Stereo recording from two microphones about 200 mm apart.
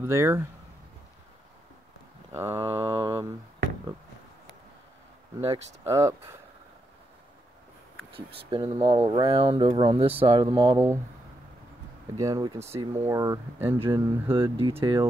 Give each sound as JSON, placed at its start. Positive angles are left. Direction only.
{"t": 0.0, "sound": "speech", "side_deg": -15}
{"t": 2.3, "sound": "speech", "side_deg": -15}
{"t": 2.7, "sound": "mantra", "side_deg": -30}
{"t": 5.4, "sound": "speech", "side_deg": -30}
{"t": 5.9, "sound": "speech", "side_deg": -15}
{"t": 8.5, "sound": "speech", "side_deg": -25}
{"t": 12.2, "sound": "speech", "side_deg": -15}